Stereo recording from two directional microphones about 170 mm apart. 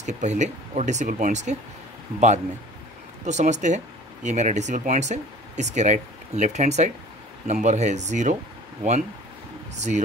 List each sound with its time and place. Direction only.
0.0 s speech: 45° right (ahead or behind)